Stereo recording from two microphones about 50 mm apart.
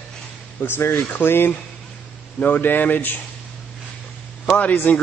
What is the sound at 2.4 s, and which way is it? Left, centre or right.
Speech, left.